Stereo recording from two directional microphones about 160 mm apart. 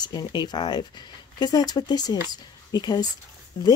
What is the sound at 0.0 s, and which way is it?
Speech, 25° left (ahead or behind).